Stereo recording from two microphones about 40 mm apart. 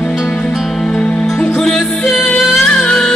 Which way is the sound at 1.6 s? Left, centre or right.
Centre.